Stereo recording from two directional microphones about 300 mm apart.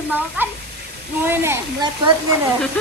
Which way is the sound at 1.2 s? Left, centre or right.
Centre.